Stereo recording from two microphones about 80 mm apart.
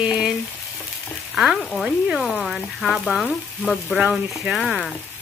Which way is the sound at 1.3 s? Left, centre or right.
Centre.